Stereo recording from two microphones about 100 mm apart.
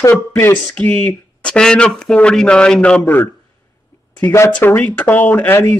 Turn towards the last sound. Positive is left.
turn(degrees=25)  # may be behind; listen again after turning